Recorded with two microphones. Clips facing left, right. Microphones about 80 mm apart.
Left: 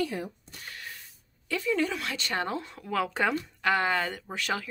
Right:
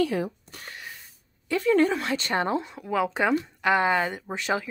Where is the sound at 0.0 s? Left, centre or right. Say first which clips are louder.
Right 6 dB; right.